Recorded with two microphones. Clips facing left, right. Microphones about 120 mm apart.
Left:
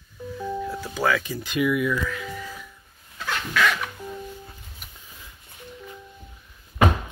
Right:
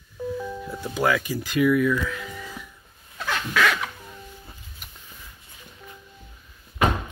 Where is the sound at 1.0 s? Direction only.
10° right (ahead or behind).